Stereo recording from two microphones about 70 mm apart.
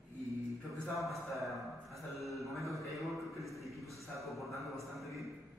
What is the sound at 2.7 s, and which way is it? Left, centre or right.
Speech, right.